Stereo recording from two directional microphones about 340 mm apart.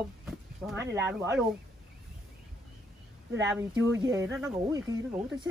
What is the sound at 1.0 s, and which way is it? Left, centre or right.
Speech, centre.